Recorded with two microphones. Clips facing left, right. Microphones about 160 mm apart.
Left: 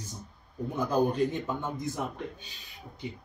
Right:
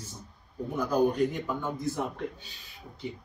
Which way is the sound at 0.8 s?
25° left (ahead or behind).